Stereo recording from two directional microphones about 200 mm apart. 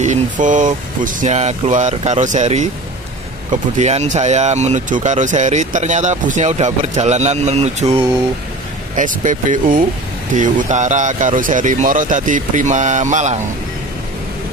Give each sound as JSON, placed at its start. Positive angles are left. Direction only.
{"t": 0.0, "sound": "speech", "side_deg": -40}
{"t": 3.7, "sound": "speech", "side_deg": -35}